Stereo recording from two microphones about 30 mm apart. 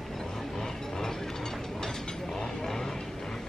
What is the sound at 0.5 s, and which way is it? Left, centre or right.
Train, centre.